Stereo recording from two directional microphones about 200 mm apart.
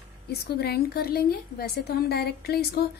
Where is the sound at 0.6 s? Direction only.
50° left (ahead or behind).